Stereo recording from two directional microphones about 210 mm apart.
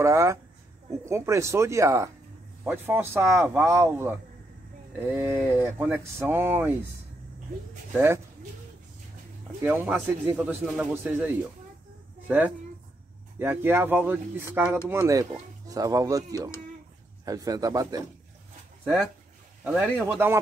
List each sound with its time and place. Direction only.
0.0 s speech: 15° right (ahead or behind)
7.9 s speech: 10° right (ahead or behind)
9.6 s speech: 5° right (ahead or behind)
19.6 s speech: 5° right (ahead or behind)